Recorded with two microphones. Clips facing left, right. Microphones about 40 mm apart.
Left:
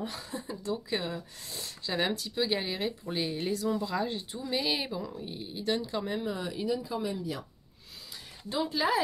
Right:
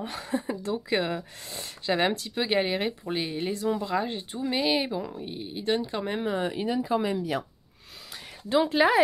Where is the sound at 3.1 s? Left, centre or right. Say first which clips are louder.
Right 2 dB; right.